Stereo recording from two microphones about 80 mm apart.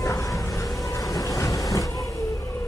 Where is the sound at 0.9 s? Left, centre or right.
Left.